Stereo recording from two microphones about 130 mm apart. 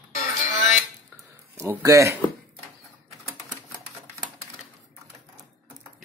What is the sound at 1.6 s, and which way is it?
Speech, 15° right (ahead or behind).